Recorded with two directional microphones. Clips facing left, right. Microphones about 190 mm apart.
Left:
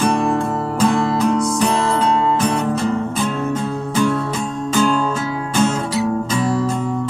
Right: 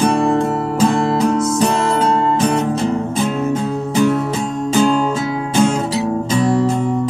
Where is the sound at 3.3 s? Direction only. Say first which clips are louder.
Right 3 dB; 20° right (ahead or behind).